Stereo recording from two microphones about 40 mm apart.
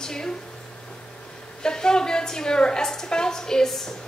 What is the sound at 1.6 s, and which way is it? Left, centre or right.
A woman's voice, centre.